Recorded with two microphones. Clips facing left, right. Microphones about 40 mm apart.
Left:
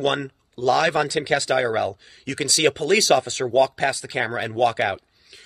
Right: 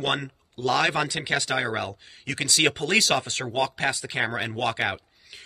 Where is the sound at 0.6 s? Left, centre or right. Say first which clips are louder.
Left 5 dB; right.